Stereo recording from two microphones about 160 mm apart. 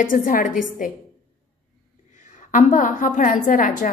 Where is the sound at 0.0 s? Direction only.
55° left (ahead or behind).